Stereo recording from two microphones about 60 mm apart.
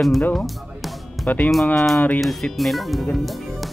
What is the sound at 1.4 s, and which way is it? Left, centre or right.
Speech, centre.